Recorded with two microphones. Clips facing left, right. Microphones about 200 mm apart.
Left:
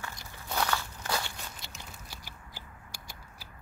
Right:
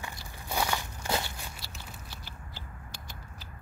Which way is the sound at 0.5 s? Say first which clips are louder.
Even; 15° right (ahead or behind).